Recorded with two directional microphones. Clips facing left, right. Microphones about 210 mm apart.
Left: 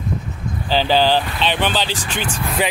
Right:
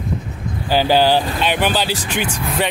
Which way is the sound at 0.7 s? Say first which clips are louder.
Right 2 dB; 10° right (ahead or behind).